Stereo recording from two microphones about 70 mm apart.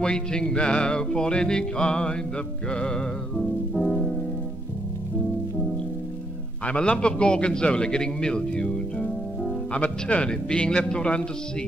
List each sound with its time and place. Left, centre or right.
0.0 s a man's voice: centre
2.7 s music: centre
6.6 s a man's voice: centre